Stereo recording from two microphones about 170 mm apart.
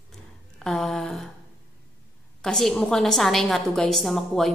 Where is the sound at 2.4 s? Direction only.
Centre (ahead or behind).